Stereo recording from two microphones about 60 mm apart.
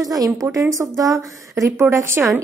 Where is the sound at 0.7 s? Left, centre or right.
Right.